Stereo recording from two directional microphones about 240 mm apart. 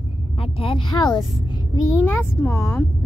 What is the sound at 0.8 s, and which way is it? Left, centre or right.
Speech, centre.